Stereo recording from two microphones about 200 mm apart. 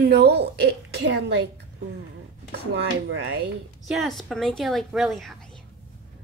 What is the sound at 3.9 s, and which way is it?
A woman's voice, centre (ahead or behind).